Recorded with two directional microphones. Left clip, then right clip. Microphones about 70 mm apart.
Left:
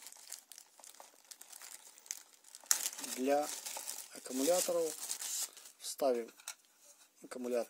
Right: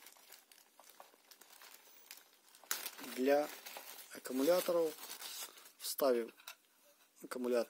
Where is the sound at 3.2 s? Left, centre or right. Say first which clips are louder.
Right 1 dB; right.